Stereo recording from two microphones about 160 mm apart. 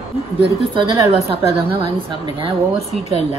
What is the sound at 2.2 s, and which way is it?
Speech, 35° right (ahead or behind).